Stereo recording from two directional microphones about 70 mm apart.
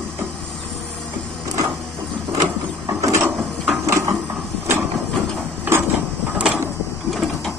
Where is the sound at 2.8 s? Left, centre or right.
Right.